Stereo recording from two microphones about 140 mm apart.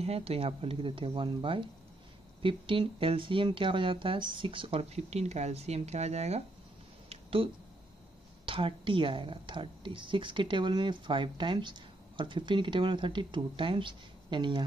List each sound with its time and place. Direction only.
0.0 s a woman's voice: 45° right (ahead or behind)
7.1 s a sound: 40° right (ahead or behind)
8.5 s a woman's voice: 40° right (ahead or behind)